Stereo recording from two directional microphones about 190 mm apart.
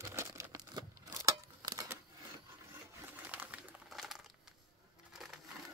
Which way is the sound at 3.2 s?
10° right (ahead or behind).